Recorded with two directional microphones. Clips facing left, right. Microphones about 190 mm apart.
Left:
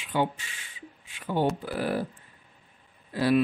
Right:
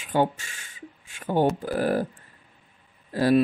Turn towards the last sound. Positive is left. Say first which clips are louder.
# right 3 dB
turn(degrees=-40)  # may be behind; listen again after turning